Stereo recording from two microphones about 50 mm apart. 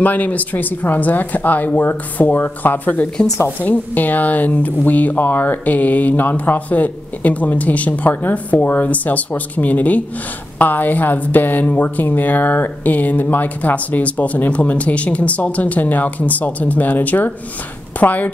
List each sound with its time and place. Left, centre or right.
0.0 s speech: left